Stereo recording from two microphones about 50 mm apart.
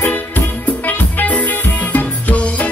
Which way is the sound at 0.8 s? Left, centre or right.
Left.